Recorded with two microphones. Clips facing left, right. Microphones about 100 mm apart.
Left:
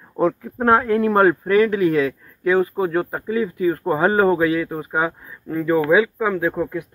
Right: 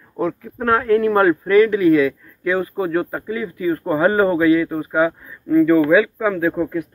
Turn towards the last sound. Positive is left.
turn(degrees=10)  # may be behind; listen again after turning